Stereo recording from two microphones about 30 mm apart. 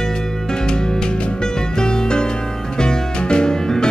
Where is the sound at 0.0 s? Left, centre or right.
Centre.